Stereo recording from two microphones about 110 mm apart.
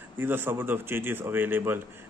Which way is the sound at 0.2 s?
20° right (ahead or behind).